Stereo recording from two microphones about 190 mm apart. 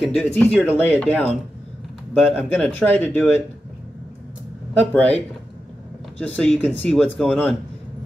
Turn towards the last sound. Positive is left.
turn(degrees=5)  # may be behind; listen again after turning